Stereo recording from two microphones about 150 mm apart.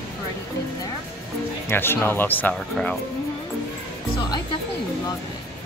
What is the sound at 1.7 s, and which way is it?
Speech, 15° left (ahead or behind).